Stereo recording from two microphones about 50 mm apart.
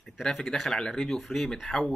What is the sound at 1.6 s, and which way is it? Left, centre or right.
Speech, centre.